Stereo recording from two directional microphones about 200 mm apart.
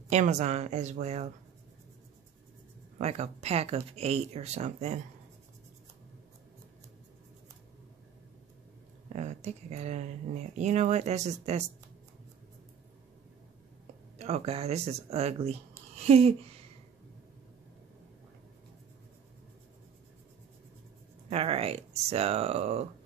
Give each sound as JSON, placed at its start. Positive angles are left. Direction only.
{"t": 0.1, "sound": "speech", "side_deg": -35}
{"t": 3.0, "sound": "speech", "side_deg": -35}
{"t": 9.1, "sound": "speech", "side_deg": -35}
{"t": 14.1, "sound": "speech", "side_deg": -35}
{"t": 21.3, "sound": "speech", "side_deg": -30}